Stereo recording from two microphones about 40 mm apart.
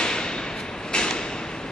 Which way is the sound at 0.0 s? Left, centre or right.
Centre.